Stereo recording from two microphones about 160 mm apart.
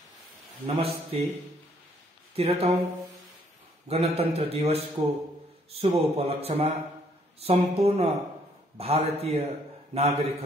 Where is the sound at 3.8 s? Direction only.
40° right (ahead or behind).